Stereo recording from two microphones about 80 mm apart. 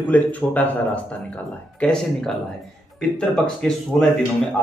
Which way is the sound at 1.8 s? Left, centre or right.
Centre.